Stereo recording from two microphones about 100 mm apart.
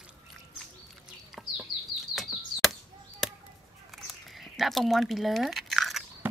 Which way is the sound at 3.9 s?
Centre (ahead or behind).